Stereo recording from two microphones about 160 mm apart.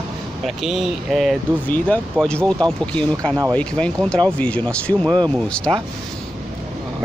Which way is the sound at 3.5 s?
5° left (ahead or behind).